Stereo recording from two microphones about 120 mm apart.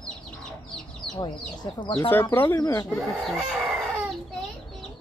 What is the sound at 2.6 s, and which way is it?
Speech, 30° left (ahead or behind).